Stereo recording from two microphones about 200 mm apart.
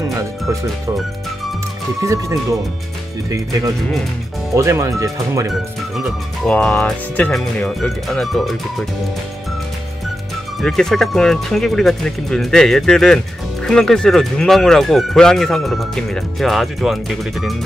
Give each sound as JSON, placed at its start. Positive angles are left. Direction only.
{"t": 2.0, "sound": "speech", "side_deg": -15}
{"t": 5.5, "sound": "speech", "side_deg": 0}
{"t": 10.6, "sound": "speech", "side_deg": 0}